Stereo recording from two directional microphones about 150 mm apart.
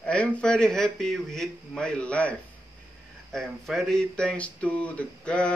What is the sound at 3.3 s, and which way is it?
A man's voice, centre (ahead or behind).